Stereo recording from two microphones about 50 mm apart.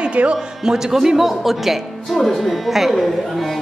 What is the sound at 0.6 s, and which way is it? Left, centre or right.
A woman's voice, centre.